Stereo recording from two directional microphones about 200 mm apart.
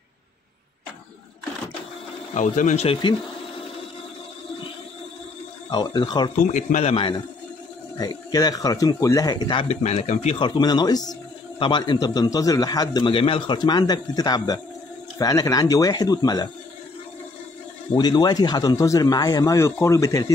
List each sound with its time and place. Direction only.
2.3 s a man's voice: 40° left (ahead or behind)
5.7 s a man's voice: 20° left (ahead or behind)
6.3 s a man's voice: 35° left (ahead or behind)
10.6 s a man's voice: 20° left (ahead or behind)
17.9 s a man's voice: 20° left (ahead or behind)